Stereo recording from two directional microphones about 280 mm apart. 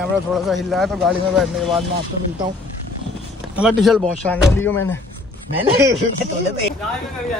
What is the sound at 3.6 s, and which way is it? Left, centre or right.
Speech, centre.